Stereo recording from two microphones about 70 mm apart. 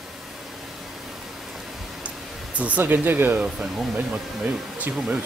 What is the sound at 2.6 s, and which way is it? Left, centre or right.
Speech, right.